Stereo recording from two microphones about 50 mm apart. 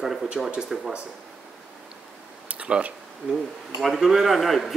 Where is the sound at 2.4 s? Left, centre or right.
Right.